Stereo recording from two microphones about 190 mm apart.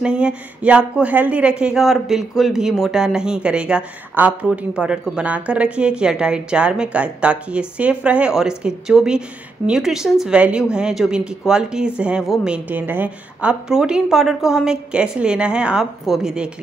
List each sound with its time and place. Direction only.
0.0 s a man's voice: 5° right (ahead or behind)